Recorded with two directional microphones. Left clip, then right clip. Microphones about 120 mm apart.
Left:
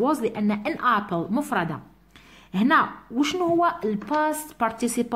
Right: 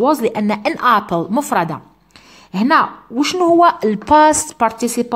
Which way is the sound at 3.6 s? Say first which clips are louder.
Right 11 dB; 45° right (ahead or behind).